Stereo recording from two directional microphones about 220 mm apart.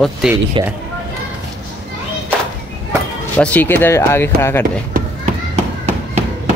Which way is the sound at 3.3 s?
5° left (ahead or behind).